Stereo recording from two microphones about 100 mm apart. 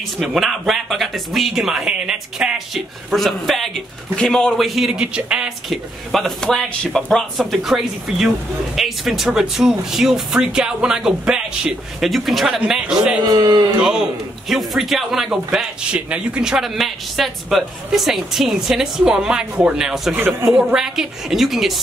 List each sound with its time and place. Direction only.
0.2 s speech: centre (ahead or behind)
6.1 s speech: centre (ahead or behind)
13.2 s speech: 40° right (ahead or behind)
13.7 s speech: 5° right (ahead or behind)